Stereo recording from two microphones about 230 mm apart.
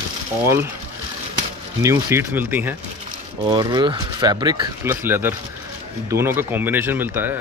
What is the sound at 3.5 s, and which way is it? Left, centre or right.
Speech, centre.